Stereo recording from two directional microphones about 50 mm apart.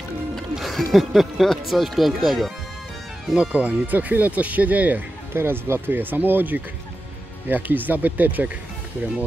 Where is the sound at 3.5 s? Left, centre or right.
Right.